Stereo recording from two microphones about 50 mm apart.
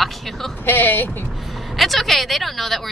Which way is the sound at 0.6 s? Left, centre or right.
Left.